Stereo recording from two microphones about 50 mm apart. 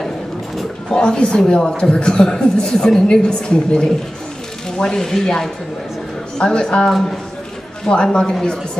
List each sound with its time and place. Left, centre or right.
0.9 s a woman's voice: centre